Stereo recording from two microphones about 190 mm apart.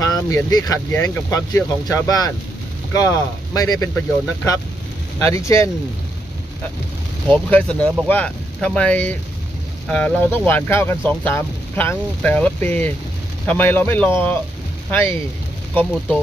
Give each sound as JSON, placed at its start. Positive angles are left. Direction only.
{"t": 0.0, "sound": "speech", "side_deg": 20}
{"t": 5.5, "sound": "speech", "side_deg": 15}
{"t": 7.2, "sound": "speech", "side_deg": 5}